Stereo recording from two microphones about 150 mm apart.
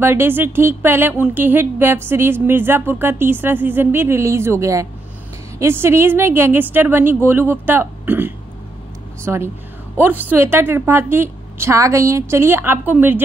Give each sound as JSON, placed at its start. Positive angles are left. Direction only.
{"t": 0.0, "sound": "a woman's voice", "side_deg": -15}